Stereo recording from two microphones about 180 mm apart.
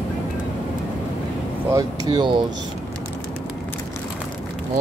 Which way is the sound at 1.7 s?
20° right (ahead or behind).